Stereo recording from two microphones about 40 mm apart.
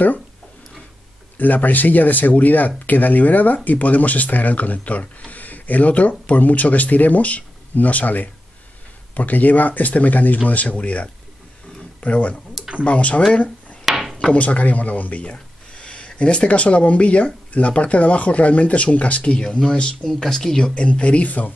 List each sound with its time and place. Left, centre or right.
1.4 s speech: left
13.3 s a sound: left
13.8 s drawer open or close: centre
14.3 s speech: left
15.2 s speech: left